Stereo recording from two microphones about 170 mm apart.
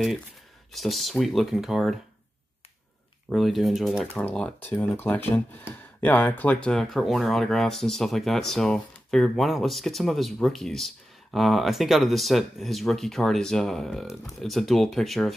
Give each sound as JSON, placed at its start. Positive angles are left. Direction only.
{"t": 0.7, "sound": "speech", "side_deg": 0}
{"t": 3.3, "sound": "speech", "side_deg": 0}